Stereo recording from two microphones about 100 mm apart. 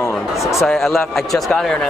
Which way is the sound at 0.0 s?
30° left (ahead or behind).